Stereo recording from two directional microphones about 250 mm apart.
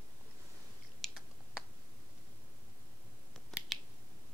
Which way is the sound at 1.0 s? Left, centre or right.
Centre.